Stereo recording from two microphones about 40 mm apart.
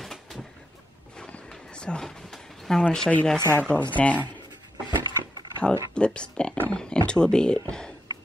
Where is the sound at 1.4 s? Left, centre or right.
Centre.